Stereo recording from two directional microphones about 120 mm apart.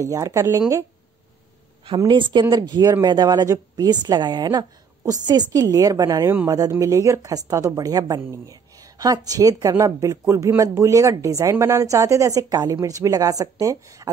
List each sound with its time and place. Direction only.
0.0 s speech: 25° right (ahead or behind)
2.0 s a woman's voice: 40° right (ahead or behind)